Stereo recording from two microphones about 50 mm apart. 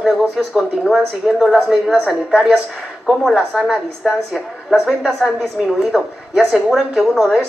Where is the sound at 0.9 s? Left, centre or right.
Centre.